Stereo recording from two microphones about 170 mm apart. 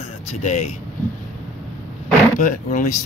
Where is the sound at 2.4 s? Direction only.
50° left (ahead or behind).